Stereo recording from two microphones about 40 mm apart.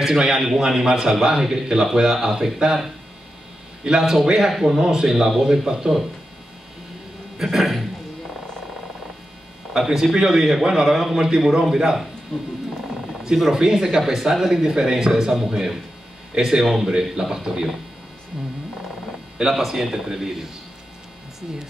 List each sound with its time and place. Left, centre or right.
0.0 s a man's voice: centre
4.0 s a man's voice: centre
7.5 s a man's voice: centre
9.8 s a man's voice: centre
12.3 s speech: centre
13.5 s a man's voice: centre
19.3 s a man's voice: centre